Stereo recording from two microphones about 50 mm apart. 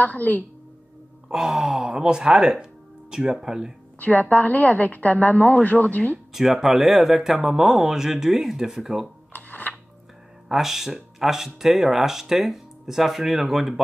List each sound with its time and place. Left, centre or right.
0.0 s a woman's voice: left
1.3 s speech: centre
4.0 s a woman's voice: left
6.3 s speech: centre
9.3 s a sound: left
10.5 s speech: centre